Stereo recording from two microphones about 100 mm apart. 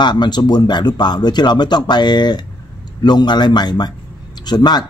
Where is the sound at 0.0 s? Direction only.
45° left (ahead or behind).